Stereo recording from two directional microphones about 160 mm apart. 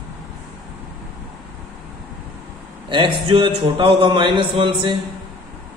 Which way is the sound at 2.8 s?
30° right (ahead or behind).